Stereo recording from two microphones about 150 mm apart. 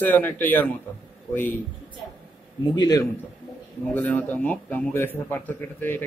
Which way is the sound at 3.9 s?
10° left (ahead or behind).